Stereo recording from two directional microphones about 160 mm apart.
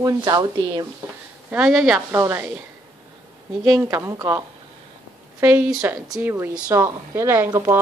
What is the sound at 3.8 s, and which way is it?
Speech, 20° right (ahead or behind).